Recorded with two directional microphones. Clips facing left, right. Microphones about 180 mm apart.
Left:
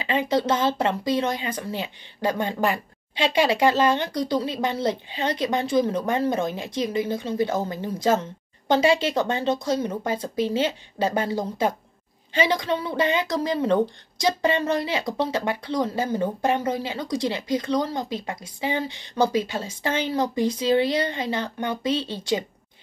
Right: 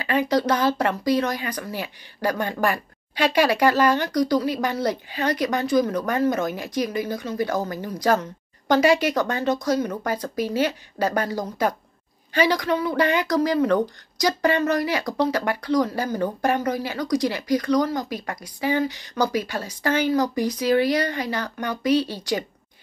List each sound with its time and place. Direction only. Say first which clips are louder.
0.0 s speech: right 1 dB; 25° left (ahead or behind)